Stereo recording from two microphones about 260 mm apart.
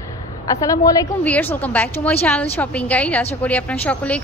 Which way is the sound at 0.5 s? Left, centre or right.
Centre.